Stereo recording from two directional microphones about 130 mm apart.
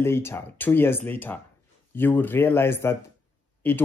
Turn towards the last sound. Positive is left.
turn(degrees=15)  # may be behind; listen again after turning